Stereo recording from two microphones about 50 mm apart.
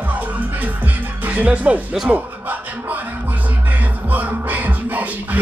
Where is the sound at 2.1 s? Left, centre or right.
Right.